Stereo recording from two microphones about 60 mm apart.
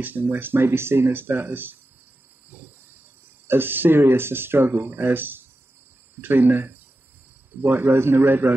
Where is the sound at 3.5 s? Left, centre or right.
Right.